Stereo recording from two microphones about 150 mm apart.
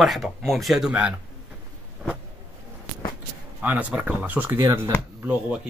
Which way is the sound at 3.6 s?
10° right (ahead or behind).